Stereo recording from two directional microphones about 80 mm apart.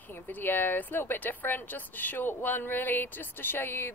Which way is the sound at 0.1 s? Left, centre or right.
Left.